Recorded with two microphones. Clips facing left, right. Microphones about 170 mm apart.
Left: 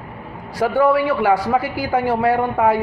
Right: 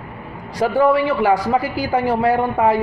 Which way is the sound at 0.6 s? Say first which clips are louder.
Even; 25° right (ahead or behind).